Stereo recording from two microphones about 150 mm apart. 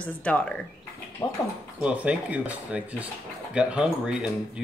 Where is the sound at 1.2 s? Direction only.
25° left (ahead or behind).